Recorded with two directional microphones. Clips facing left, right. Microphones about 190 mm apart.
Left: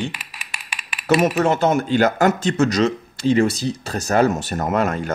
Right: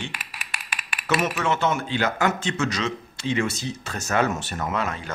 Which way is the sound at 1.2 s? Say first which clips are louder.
Left 6 dB; 40° left (ahead or behind).